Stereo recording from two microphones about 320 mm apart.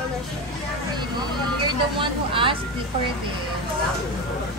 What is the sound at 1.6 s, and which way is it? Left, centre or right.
Speech, centre.